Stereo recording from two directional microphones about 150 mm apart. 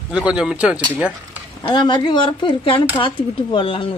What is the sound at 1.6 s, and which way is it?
Speech, 30° left (ahead or behind).